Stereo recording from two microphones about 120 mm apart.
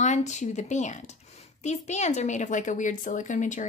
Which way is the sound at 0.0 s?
75° left (ahead or behind).